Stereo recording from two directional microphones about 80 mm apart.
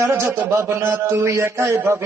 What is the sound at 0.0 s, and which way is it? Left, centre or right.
A man's voice, right.